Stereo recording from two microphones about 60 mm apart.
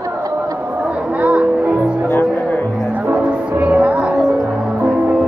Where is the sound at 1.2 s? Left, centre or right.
Right.